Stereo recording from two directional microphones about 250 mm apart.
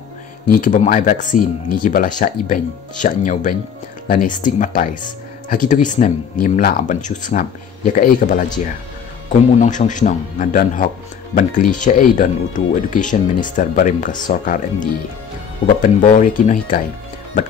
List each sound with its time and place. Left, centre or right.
0.5 s speech: left
9.6 s speech: left